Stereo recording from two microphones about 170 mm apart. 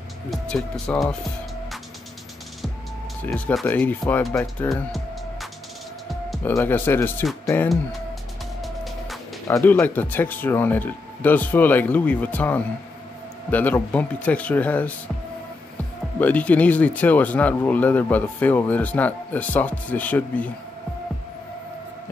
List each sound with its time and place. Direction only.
0.3 s speech: 5° left (ahead or behind)
3.2 s speech: 10° left (ahead or behind)
4.7 s music: centre (ahead or behind)
6.4 s speech: 10° left (ahead or behind)
8.5 s music: centre (ahead or behind)
9.5 s speech: 15° left (ahead or behind)
16.2 s speech: 10° left (ahead or behind)